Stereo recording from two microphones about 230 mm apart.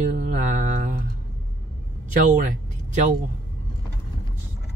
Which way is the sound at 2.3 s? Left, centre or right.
Right.